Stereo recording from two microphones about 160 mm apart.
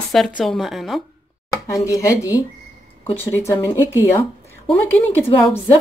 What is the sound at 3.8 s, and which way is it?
Speech, 15° right (ahead or behind).